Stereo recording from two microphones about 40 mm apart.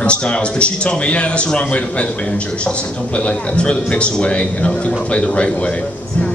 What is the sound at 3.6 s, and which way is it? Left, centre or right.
Speech, left.